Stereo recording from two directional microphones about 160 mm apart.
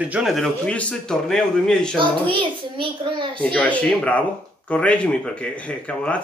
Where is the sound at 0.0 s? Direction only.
5° right (ahead or behind).